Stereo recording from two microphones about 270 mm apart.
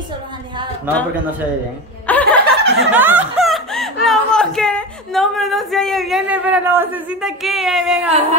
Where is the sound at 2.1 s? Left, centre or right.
Centre.